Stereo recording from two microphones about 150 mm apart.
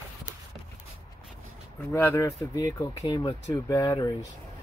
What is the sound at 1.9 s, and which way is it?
Speech, 15° left (ahead or behind).